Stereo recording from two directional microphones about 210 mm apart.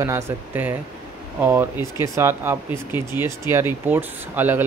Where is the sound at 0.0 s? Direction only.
10° right (ahead or behind).